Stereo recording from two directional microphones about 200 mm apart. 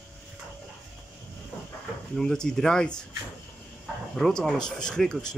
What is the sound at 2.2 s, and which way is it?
Speech, 5° left (ahead or behind).